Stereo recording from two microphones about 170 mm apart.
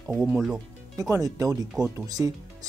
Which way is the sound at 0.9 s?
20° right (ahead or behind).